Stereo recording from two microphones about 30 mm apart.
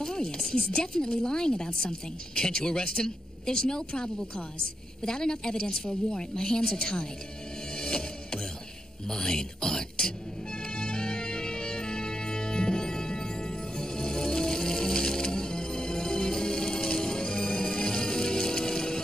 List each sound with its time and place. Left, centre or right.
0.0 s speech: left
7.7 s music: left
9.1 s speech: left
10.7 s music: left